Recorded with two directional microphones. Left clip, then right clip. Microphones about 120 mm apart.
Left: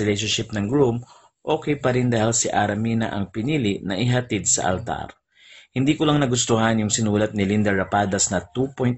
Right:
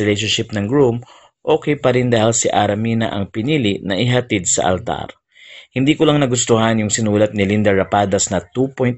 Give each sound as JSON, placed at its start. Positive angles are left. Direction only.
{"t": 0.0, "sound": "speech", "side_deg": -35}